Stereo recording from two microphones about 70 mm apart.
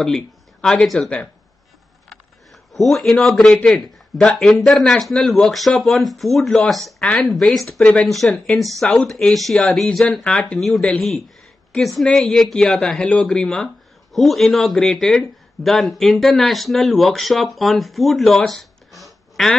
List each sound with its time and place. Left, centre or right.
0.0 s speech: centre
2.7 s speech: centre
7.8 s speech: centre
8.5 s speech: centre
9.6 s speech: centre
18.5 s a sound: centre